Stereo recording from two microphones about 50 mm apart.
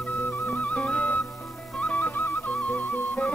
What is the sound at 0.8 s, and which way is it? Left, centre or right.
Music, left.